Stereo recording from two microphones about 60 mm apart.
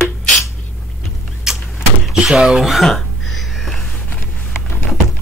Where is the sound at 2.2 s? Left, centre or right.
Centre.